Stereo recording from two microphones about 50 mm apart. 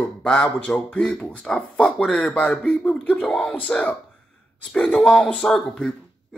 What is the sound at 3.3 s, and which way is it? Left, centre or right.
Speech, centre.